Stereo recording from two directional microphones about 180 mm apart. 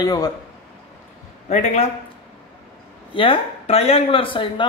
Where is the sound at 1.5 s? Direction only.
40° left (ahead or behind).